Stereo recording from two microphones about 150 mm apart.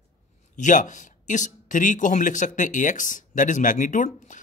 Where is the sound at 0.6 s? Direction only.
55° left (ahead or behind).